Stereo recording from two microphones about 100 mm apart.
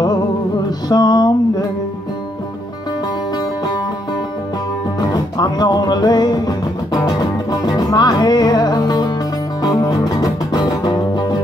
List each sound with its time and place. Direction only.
0.7 s music: 45° left (ahead or behind)
5.0 s music: 40° left (ahead or behind)